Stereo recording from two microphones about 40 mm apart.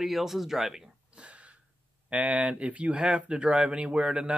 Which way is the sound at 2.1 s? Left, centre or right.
Right.